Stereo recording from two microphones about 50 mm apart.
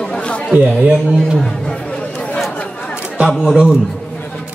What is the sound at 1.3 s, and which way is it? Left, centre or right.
Chatter, centre.